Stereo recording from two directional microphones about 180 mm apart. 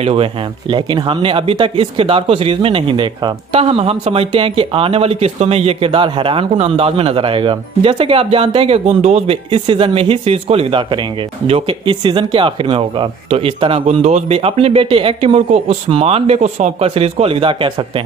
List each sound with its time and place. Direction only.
0.0 s speech: 30° right (ahead or behind)